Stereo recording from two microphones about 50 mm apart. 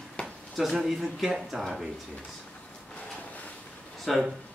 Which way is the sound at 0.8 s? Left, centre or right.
Centre.